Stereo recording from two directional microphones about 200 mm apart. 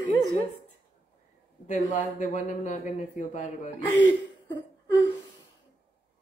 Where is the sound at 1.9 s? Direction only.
40° left (ahead or behind).